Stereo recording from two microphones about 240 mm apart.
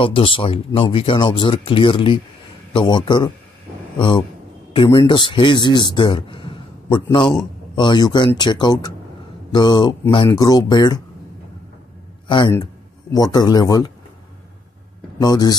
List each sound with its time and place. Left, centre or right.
0.0 s a man's voice: left
4.7 s a man's voice: centre
13.1 s speech: centre
15.1 s speech: centre